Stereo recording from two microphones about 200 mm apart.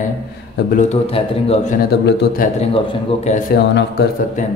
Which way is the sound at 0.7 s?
30° left (ahead or behind).